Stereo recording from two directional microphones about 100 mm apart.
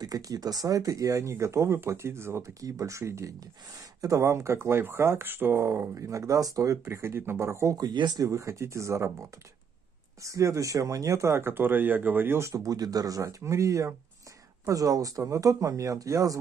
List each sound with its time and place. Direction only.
0.0 s speech: 35° right (ahead or behind)
7.7 s speech: 45° right (ahead or behind)
8.3 s speech: 30° right (ahead or behind)